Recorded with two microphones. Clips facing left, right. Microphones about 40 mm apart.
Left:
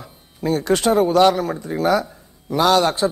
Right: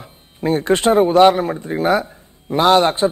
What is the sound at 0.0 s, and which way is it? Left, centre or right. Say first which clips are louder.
A man's voice: right 3 dB; right.